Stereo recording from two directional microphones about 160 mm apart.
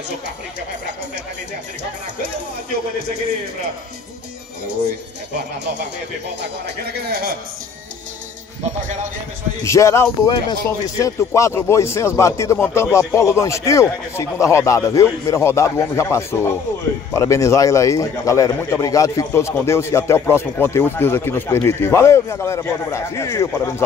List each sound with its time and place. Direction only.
6.4 s speech: 90° right
9.6 s a man's voice: 20° left (ahead or behind)